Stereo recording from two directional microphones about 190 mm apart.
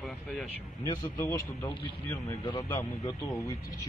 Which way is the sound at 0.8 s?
15° left (ahead or behind).